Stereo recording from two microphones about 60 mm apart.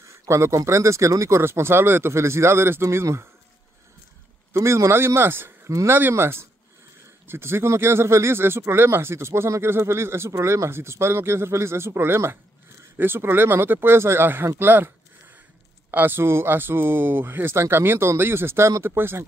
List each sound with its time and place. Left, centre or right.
0.1 s speech: right
1.4 s speech: right
4.6 s speech: right
15.9 s speech: right